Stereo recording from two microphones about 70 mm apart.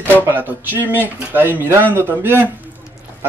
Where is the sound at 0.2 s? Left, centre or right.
Right.